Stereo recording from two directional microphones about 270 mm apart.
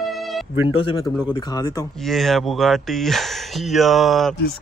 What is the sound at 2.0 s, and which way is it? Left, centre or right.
Speech, centre.